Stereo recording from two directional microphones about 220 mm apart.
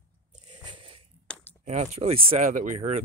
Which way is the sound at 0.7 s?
25° right (ahead or behind).